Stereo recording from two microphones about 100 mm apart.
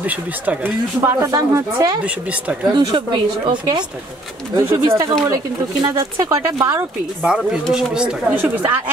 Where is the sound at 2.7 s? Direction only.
55° right (ahead or behind).